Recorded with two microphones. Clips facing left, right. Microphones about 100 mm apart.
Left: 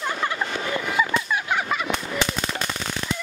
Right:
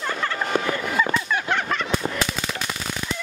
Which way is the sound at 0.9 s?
5° left (ahead or behind).